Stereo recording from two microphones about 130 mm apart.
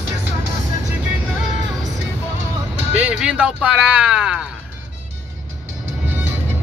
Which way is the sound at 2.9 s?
10° right (ahead or behind).